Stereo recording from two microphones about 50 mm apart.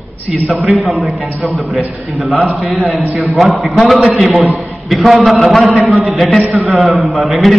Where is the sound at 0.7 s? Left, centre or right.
Centre.